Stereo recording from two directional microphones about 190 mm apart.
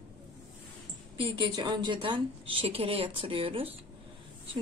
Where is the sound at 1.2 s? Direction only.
25° right (ahead or behind).